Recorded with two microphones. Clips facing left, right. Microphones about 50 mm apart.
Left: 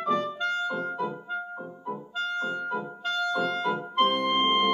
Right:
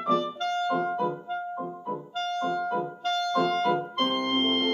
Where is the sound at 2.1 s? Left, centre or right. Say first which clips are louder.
Right 1 dB; centre.